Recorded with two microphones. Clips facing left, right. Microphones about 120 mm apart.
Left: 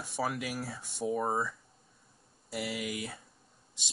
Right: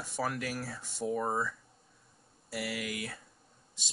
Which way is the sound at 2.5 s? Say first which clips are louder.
Left 1 dB; 20° left (ahead or behind).